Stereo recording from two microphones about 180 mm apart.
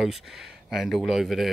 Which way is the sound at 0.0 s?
Centre (ahead or behind).